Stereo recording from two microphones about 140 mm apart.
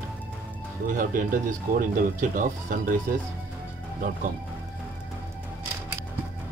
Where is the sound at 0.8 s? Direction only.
70° right (ahead or behind).